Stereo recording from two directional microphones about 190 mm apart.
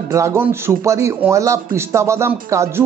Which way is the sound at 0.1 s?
15° right (ahead or behind).